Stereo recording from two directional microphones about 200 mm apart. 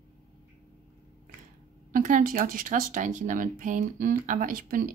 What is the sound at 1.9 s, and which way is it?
Speech, 45° right (ahead or behind).